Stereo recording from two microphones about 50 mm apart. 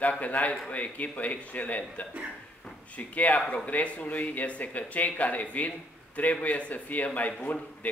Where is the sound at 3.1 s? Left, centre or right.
Left.